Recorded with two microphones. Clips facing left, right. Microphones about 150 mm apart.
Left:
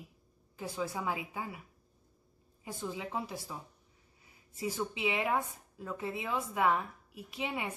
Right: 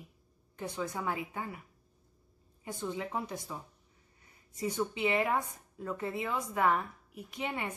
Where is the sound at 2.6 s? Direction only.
5° left (ahead or behind).